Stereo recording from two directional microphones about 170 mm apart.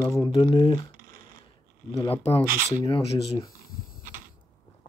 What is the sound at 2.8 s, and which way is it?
Speech, 25° left (ahead or behind).